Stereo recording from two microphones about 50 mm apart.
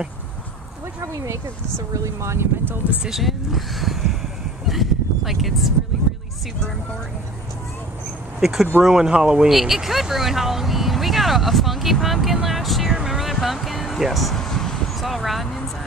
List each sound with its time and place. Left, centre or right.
1.0 s speech: right
2.0 s speech: right
2.8 s speech: right
3.2 s speech: centre
4.6 s a sound: centre
8.4 s speech: centre
9.5 s speech: centre
12.9 s music: centre
14.4 s a sound: centre
15.0 s a sound: centre